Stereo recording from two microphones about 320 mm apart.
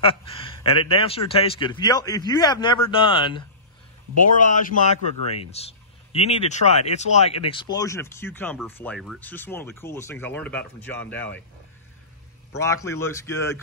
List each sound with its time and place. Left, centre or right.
0.0 s speech: centre
12.5 s speech: centre